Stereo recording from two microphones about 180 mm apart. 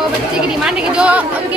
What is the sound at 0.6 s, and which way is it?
Speech, 5° right (ahead or behind).